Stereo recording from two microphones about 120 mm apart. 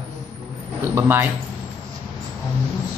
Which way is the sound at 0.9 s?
20° right (ahead or behind).